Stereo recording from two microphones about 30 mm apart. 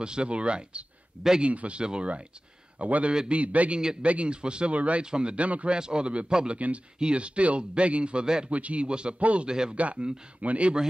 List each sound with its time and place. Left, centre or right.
0.0 s speech: right
1.4 s a man's voice: right
1.8 s speech: right
2.8 s a man's voice: right
4.3 s speech: right
4.7 s a man's voice: right
5.0 s a man's voice: right
5.3 s a man's voice: right
5.7 s a man's voice: right
8.5 s a man's voice: right
8.8 s speech: right
9.2 s a man's voice: right
9.5 s a man's voice: right
9.8 s a man's voice: right